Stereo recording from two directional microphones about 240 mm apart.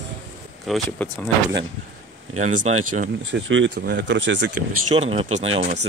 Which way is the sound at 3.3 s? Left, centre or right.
Right.